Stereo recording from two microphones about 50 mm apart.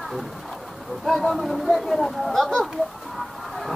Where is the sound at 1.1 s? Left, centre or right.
Centre.